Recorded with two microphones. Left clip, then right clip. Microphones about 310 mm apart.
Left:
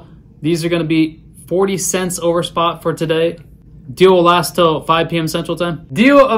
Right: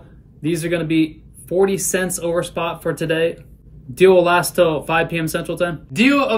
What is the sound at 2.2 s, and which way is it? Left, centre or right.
Speech, centre.